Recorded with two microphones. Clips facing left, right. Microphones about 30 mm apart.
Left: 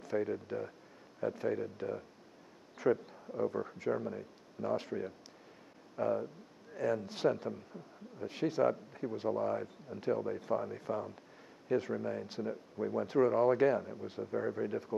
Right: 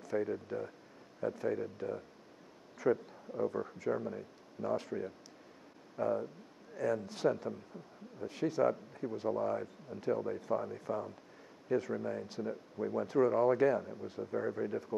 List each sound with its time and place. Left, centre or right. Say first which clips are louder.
0.0 s speech: even; centre
3.3 s speech: even; centre
5.9 s a man's voice: even; centre
8.3 s speech: even; centre
13.0 s speech: even; centre